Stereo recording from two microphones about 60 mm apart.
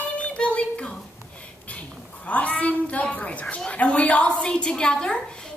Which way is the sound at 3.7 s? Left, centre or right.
Centre.